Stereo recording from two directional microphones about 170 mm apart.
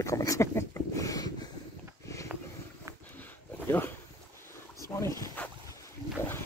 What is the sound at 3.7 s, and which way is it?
Boat, 10° left (ahead or behind).